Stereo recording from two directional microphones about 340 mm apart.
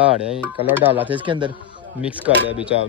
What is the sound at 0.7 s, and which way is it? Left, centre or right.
Speech, centre.